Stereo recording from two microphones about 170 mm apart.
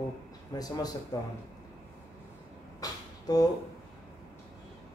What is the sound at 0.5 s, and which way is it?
Speech, 20° left (ahead or behind).